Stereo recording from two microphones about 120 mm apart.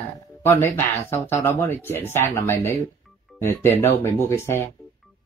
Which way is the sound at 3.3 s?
5° left (ahead or behind).